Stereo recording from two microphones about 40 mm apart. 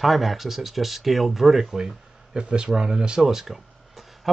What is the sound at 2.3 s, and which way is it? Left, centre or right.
Speech, right.